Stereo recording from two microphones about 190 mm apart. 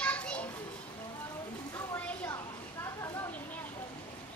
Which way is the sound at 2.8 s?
15° left (ahead or behind).